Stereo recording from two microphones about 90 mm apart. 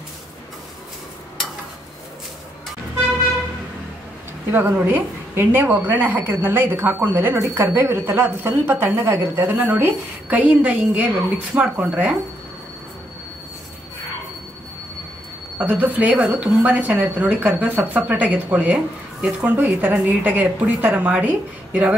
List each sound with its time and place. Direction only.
4.5 s a woman's voice: 25° right (ahead or behind)
15.5 s a woman's voice: 20° right (ahead or behind)